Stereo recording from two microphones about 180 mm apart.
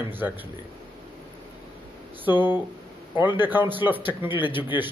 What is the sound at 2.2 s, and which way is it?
Speech, 10° right (ahead or behind).